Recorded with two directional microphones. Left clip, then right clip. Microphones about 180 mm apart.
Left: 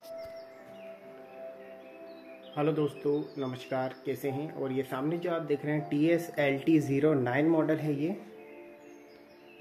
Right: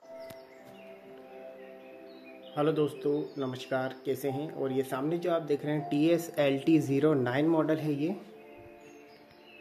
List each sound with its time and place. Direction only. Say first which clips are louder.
2.5 s speech: right 1 dB; 15° right (ahead or behind)
6.1 s speech: even; 10° right (ahead or behind)
6.4 s speech: right 2 dB; 20° right (ahead or behind)
7.0 s speech: even; 10° right (ahead or behind)